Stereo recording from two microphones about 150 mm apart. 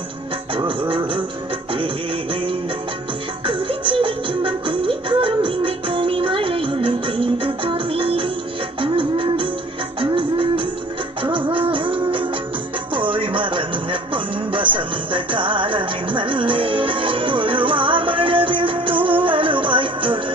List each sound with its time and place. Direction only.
0.6 s music: 35° right (ahead or behind)
3.4 s music: 35° right (ahead or behind)